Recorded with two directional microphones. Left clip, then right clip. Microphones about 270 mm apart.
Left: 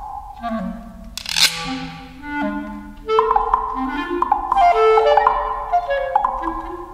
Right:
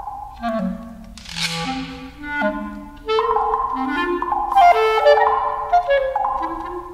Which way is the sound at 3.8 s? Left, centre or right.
Right.